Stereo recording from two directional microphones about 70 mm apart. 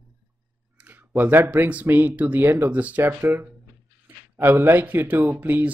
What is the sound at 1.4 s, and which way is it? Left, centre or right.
Speech, right.